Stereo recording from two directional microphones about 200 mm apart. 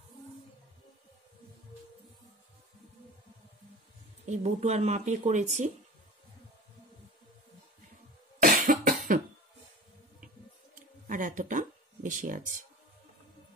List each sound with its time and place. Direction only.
4.3 s speech: 35° right (ahead or behind)
8.4 s cough: 45° right (ahead or behind)
11.1 s a sound: 40° right (ahead or behind)